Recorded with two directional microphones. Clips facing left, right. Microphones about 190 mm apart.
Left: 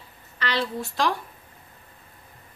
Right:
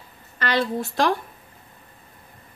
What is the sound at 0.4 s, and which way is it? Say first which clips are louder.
Speech: right 4 dB; 50° right (ahead or behind).